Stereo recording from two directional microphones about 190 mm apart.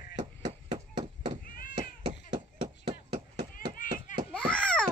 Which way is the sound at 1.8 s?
25° right (ahead or behind).